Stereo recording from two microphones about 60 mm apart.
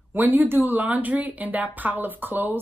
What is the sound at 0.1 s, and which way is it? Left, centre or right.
Speech, right.